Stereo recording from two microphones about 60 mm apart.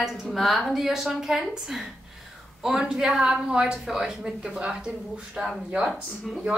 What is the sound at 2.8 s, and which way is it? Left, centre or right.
A woman's voice, centre.